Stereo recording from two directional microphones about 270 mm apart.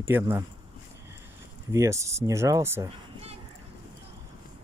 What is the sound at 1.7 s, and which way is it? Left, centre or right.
Speech, centre.